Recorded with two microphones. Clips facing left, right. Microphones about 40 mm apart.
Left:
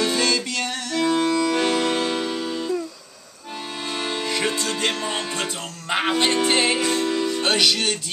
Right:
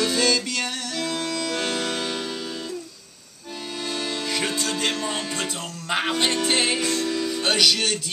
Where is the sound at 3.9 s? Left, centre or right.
Left.